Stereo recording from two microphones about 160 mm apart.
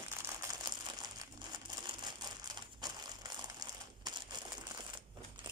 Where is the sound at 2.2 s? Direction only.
25° right (ahead or behind).